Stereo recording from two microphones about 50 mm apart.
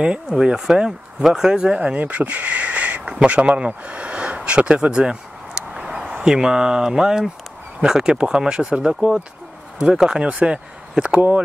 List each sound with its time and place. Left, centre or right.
0.0 s speech: centre
2.0 s speech: right
11.1 s speech: right